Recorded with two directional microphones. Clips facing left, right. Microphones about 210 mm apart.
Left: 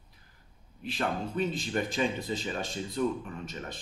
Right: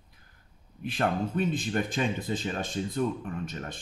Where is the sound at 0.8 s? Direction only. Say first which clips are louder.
Right 4 dB; 55° right (ahead or behind).